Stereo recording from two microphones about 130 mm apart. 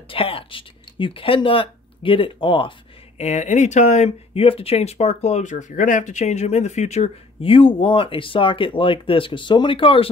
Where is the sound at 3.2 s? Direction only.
60° left (ahead or behind).